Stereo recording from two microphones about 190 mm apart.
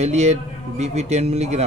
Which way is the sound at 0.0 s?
35° right (ahead or behind).